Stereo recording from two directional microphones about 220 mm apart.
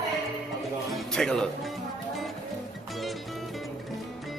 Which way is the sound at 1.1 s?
Centre (ahead or behind).